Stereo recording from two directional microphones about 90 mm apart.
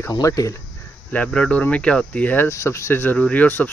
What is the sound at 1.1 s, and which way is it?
Speech, 10° left (ahead or behind).